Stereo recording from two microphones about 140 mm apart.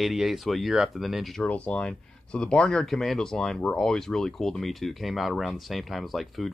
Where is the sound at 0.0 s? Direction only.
Centre (ahead or behind).